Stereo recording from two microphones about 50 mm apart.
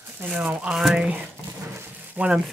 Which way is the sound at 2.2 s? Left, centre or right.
Right.